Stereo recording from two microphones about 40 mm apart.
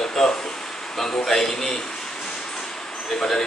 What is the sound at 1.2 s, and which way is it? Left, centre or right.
Speech, centre.